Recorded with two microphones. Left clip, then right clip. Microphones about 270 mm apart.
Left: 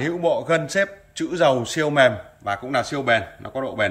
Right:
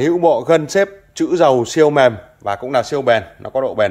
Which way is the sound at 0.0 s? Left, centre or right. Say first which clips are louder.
Right 8 dB; centre.